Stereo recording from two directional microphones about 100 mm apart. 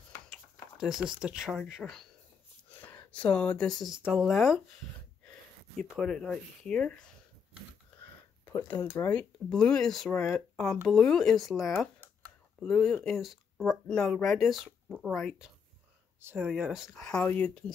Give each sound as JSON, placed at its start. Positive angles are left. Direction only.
{"t": 0.3, "sound": "a sound", "side_deg": -5}
{"t": 1.2, "sound": "speech", "side_deg": -5}
{"t": 2.7, "sound": "speech", "side_deg": 15}
{"t": 5.2, "sound": "a sound", "side_deg": 15}
{"t": 5.9, "sound": "speech", "side_deg": 5}
{"t": 9.1, "sound": "speech", "side_deg": 5}
{"t": 10.1, "sound": "speech", "side_deg": 30}
{"t": 10.5, "sound": "speech", "side_deg": 5}
{"t": 16.2, "sound": "speech", "side_deg": -25}
{"t": 16.7, "sound": "speech", "side_deg": 0}